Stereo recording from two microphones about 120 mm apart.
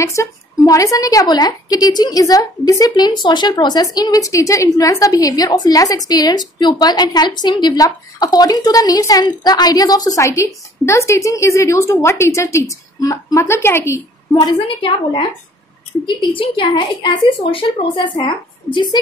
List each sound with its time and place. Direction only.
0.0 s speech: 25° left (ahead or behind)
14.3 s speech: 40° left (ahead or behind)